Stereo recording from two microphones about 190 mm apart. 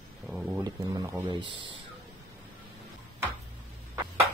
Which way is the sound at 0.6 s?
20° right (ahead or behind).